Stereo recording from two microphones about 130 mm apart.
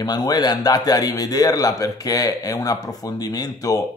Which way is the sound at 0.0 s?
30° left (ahead or behind).